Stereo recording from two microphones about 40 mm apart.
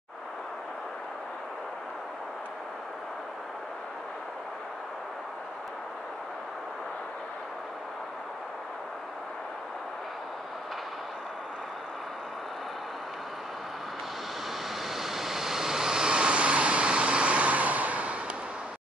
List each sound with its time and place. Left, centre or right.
14.9 s vehicle: centre; by 18.2 s right